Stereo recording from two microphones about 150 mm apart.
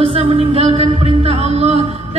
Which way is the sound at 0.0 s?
35° right (ahead or behind).